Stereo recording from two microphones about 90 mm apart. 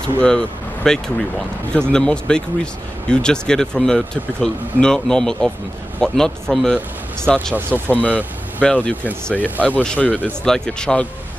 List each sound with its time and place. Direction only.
0.2 s speech: 5° left (ahead or behind)
7.7 s speech: 20° left (ahead or behind)